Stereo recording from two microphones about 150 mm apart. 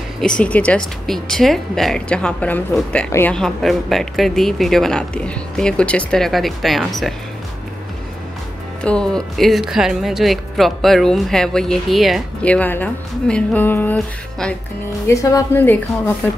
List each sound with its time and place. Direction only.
0.2 s speech: 5° left (ahead or behind)
3.3 s speech: centre (ahead or behind)
8.8 s speech: 5° left (ahead or behind)
15.0 s speech: 20° left (ahead or behind)